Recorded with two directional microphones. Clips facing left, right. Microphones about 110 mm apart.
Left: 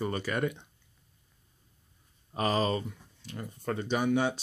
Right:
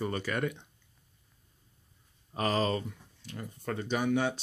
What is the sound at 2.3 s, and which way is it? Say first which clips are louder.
Speech: left 1 dB; 10° left (ahead or behind).